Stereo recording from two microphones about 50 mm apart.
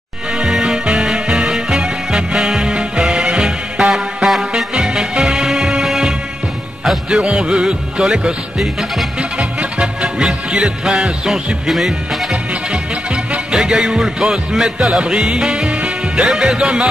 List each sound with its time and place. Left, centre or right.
0.4 s music: centre
9.4 s music: right; by 12.3 s centre
12.3 s music: right